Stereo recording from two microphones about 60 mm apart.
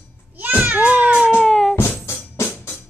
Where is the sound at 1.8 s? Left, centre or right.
Left.